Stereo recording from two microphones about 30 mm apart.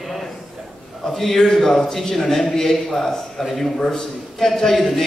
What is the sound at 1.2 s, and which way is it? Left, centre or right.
A man's voice, centre.